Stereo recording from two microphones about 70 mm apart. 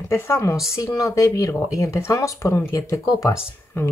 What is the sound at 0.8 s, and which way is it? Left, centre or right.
Speech, left.